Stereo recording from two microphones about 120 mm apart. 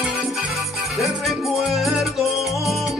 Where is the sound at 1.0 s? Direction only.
Centre (ahead or behind).